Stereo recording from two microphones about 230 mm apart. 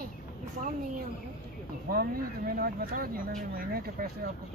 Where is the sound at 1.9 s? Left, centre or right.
Right.